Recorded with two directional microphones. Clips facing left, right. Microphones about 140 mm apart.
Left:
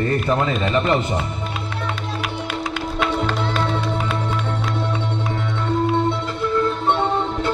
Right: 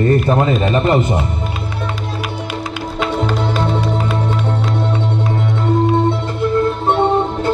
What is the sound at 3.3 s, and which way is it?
Music, 10° right (ahead or behind).